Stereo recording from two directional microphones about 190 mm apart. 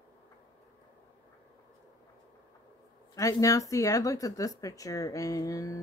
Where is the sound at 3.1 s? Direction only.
15° left (ahead or behind).